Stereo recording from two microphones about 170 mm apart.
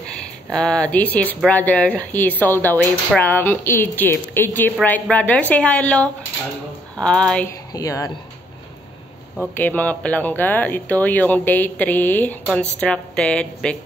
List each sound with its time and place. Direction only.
0.1 s a woman's voice: 5° left (ahead or behind)
7.7 s speech: 20° left (ahead or behind)
9.4 s a woman's voice: 10° left (ahead or behind)